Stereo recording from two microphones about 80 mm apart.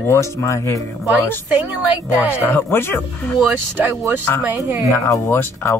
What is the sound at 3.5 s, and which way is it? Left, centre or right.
Speech, right.